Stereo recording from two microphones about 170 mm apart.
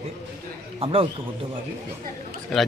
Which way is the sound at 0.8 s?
35° right (ahead or behind).